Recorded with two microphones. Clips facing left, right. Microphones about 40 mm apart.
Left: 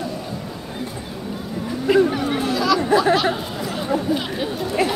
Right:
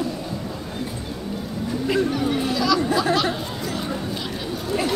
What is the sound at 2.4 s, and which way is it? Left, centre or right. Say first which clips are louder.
Chatter: left 3 dB; centre.